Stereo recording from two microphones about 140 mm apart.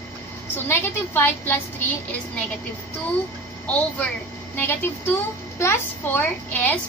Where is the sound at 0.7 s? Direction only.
15° left (ahead or behind).